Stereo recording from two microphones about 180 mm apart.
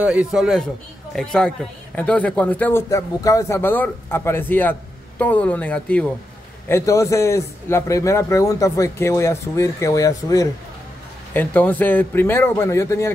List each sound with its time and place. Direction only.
0.0 s a man's voice: 5° right (ahead or behind); by 13.1 s 15° left (ahead or behind)